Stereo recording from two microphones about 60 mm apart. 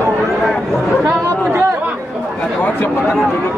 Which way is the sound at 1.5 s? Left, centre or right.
Right.